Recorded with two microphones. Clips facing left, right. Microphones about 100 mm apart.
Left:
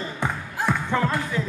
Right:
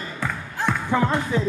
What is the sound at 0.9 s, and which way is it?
Music, 20° right (ahead or behind).